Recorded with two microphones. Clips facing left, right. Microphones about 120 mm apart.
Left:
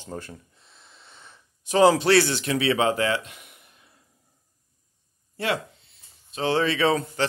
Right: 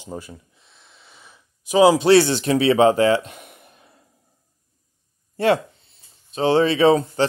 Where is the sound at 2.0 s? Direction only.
20° right (ahead or behind); by 3.9 s 45° right (ahead or behind).